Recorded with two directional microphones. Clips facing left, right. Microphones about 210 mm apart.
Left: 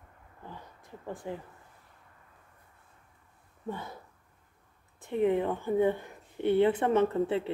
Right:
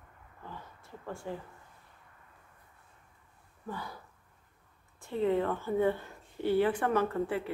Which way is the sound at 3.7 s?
25° left (ahead or behind).